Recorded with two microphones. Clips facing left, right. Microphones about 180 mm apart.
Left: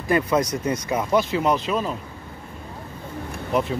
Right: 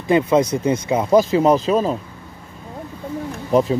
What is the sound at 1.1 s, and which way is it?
Speech, 40° right (ahead or behind).